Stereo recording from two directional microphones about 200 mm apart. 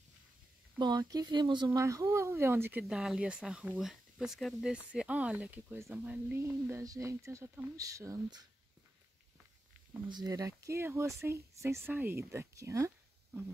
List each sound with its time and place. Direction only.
0.7 s speech: 20° right (ahead or behind)
10.0 s speech: 20° right (ahead or behind)